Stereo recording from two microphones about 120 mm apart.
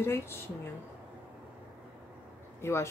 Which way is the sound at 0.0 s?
20° left (ahead or behind).